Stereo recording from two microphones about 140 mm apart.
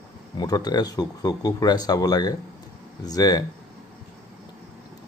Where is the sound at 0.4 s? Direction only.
25° left (ahead or behind).